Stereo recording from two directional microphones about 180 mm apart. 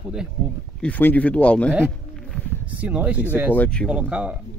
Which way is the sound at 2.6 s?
10° right (ahead or behind).